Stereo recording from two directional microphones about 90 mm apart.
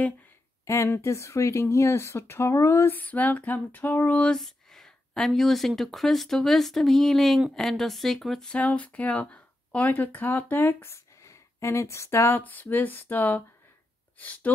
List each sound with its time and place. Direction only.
0.7 s speech: 30° left (ahead or behind)
4.4 s speech: 5° left (ahead or behind)
8.5 s speech: 15° left (ahead or behind)